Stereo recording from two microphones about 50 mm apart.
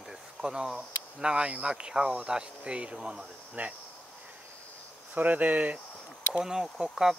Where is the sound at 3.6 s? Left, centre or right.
Right.